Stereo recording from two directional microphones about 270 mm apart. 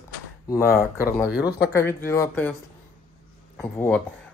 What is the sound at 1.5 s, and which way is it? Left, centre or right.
Speech, left.